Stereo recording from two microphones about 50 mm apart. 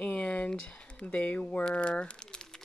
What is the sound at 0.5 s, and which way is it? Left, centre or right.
Speech, left.